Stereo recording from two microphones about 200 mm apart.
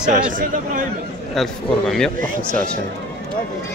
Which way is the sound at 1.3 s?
Centre (ahead or behind).